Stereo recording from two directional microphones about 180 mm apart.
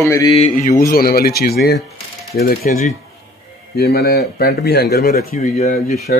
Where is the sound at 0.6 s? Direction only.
50° left (ahead or behind).